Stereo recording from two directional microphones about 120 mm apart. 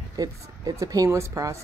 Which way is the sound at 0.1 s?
30° right (ahead or behind).